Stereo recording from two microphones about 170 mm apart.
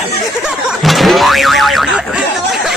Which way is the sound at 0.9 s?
Centre (ahead or behind).